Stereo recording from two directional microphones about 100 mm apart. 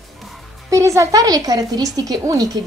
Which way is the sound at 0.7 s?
30° right (ahead or behind).